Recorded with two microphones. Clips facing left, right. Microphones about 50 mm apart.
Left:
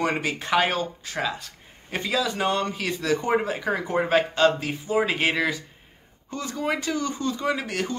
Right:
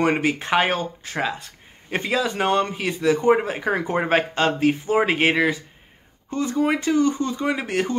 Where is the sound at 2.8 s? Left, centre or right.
Right.